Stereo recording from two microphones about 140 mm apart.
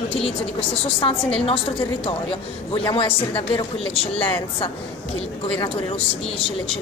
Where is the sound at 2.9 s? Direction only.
40° left (ahead or behind).